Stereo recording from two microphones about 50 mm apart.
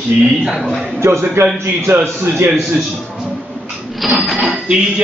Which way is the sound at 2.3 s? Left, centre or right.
Right.